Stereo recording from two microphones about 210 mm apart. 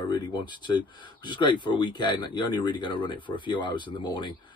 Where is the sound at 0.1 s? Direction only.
20° left (ahead or behind).